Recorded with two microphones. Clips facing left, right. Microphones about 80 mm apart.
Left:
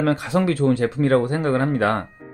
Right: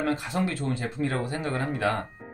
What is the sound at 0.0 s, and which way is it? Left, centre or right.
Speech, left.